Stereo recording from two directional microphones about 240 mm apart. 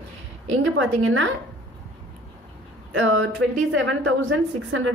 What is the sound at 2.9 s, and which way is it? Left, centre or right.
A woman's voice, right.